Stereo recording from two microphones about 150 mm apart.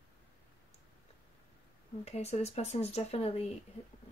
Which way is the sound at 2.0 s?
45° left (ahead or behind).